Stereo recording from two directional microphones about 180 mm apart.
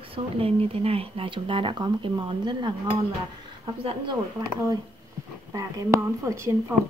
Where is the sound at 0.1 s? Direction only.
35° right (ahead or behind).